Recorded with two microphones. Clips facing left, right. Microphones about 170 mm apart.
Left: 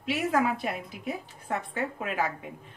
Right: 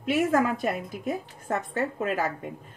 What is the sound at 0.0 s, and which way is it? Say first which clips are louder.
A woman's voice: right 3 dB; 45° right (ahead or behind).